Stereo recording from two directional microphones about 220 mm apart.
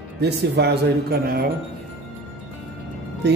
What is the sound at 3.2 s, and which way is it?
Speech, 50° right (ahead or behind).